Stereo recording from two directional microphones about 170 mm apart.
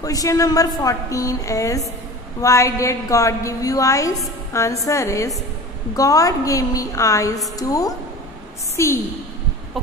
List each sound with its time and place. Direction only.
0.0 s a woman's voice: 20° left (ahead or behind)